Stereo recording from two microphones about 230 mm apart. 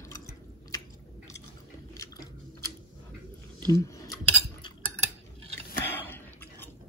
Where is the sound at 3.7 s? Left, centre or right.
Centre.